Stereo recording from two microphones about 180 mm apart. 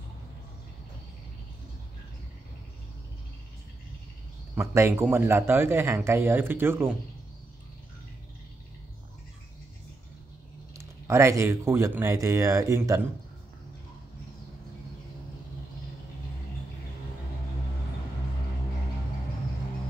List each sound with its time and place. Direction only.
4.6 s a man's voice: 15° right (ahead or behind)
10.8 s a man's voice: 15° right (ahead or behind)